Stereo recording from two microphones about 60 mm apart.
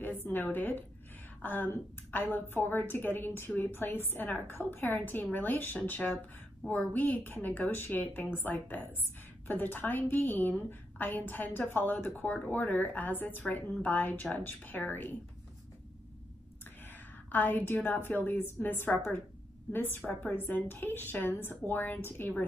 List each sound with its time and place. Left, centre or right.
0.0 s a woman's voice: left
17.3 s a woman's voice: left